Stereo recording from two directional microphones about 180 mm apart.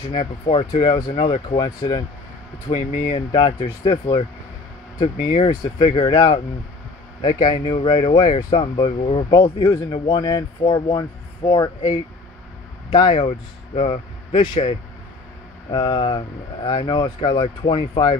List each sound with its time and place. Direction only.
0.1 s speech: 30° left (ahead or behind)